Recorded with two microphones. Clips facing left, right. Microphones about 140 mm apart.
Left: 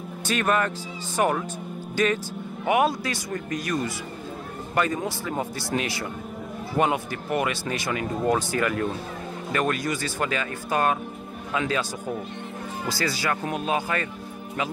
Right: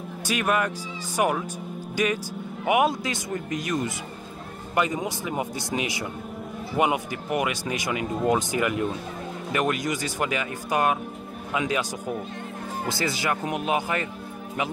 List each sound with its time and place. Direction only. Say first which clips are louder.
0.3 s speech: left 1 dB; 10° right (ahead or behind)